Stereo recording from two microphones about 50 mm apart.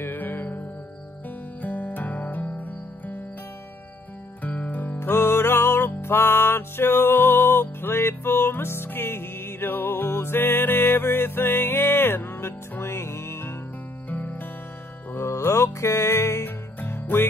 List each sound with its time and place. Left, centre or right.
0.0 s music: left
1.6 s music: left
4.4 s music: left
5.1 s music: left
14.0 s music: left
15.1 s music: left
16.4 s music: left